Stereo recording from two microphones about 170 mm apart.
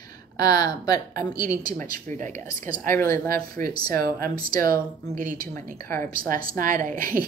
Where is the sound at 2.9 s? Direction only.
15° left (ahead or behind).